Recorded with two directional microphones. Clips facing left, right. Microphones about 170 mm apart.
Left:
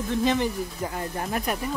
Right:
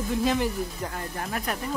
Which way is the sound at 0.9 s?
15° left (ahead or behind).